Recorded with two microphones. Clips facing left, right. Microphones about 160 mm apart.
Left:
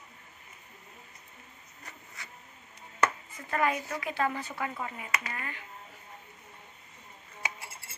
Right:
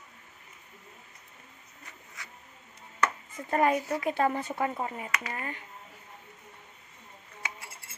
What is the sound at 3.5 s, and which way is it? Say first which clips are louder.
A woman's voice: right 4 dB; 35° right (ahead or behind).